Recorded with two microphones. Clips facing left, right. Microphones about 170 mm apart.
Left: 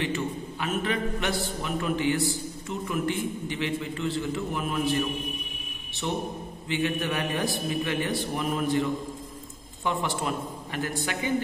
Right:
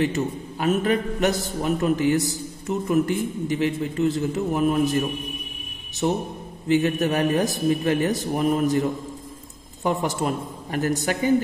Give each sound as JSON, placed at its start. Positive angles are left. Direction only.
{"t": 0.0, "sound": "a man's voice", "side_deg": -40}
{"t": 9.8, "sound": "a man's voice", "side_deg": -40}